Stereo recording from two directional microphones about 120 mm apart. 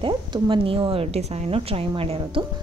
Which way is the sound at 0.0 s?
45° right (ahead or behind).